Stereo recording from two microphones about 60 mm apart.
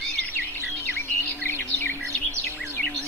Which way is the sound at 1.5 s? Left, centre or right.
Left.